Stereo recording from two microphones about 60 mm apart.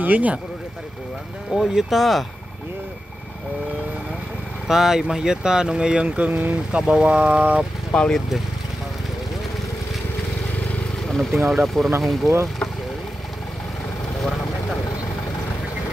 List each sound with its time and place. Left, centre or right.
0.0 s speech: right
1.5 s speech: centre
4.6 s speech: centre
7.9 s speech: centre
11.1 s speech: centre